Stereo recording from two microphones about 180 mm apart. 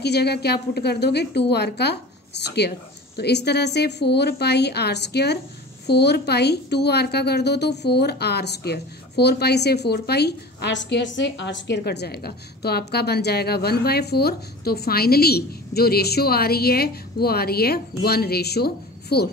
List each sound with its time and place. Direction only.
0.0 s a woman's voice: 65° left (ahead or behind)